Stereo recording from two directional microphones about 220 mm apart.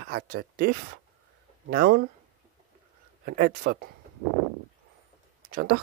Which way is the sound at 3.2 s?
40° right (ahead or behind).